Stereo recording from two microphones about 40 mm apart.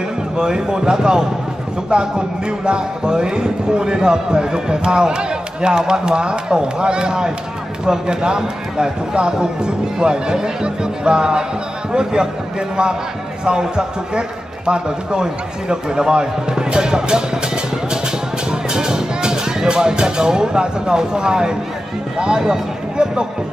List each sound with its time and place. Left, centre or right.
0.4 s speech: centre
18.5 s music: centre
22.4 s speech: centre